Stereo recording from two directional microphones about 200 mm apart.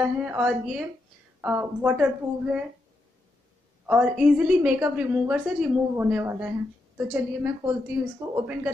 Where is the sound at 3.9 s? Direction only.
5° right (ahead or behind).